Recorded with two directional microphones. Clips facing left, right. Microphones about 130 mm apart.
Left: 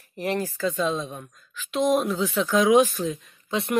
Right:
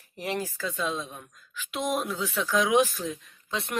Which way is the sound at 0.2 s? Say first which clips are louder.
Left 5 dB; 10° right (ahead or behind).